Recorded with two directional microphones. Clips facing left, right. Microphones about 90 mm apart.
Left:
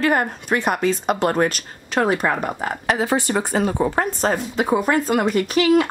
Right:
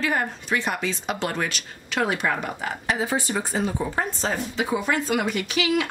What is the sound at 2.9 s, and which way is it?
Speech, 65° left (ahead or behind).